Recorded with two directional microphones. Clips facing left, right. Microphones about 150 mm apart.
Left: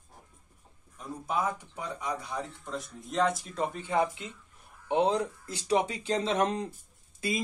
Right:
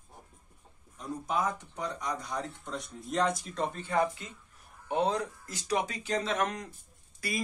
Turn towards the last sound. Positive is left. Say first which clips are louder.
# left 4 dB
turn(degrees=25)  # may be behind; listen again after turning